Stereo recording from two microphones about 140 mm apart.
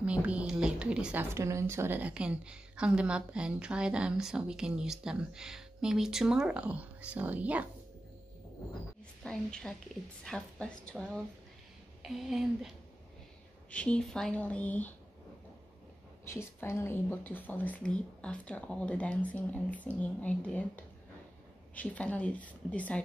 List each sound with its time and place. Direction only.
0.0 s a woman's voice: 10° right (ahead or behind)
1.3 s a woman's voice: 20° right (ahead or behind)
9.2 s a woman's voice: 5° left (ahead or behind)
16.3 s a woman's voice: 15° left (ahead or behind)